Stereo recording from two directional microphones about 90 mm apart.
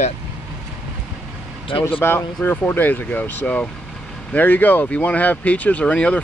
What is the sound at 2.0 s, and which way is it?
Speech, 25° left (ahead or behind).